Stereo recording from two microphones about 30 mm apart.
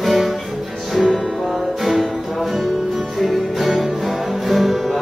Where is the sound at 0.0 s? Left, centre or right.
Centre.